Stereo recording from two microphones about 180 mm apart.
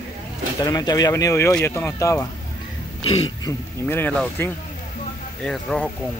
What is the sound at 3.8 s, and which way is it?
Speech, 10° left (ahead or behind).